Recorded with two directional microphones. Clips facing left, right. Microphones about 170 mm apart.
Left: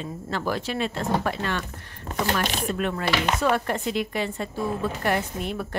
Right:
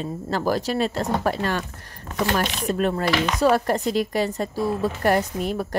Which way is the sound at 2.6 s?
35° right (ahead or behind).